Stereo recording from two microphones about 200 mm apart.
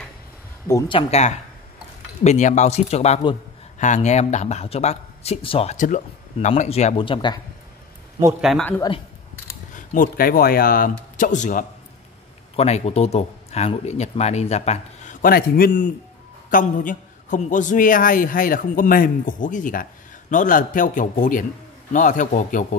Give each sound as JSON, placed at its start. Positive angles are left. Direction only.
{"t": 0.7, "sound": "speech", "side_deg": 15}
{"t": 0.9, "sound": "speech", "side_deg": 35}
{"t": 8.4, "sound": "speech", "side_deg": 0}
{"t": 9.8, "sound": "a man's voice", "side_deg": 45}
{"t": 15.2, "sound": "a man's voice", "side_deg": 45}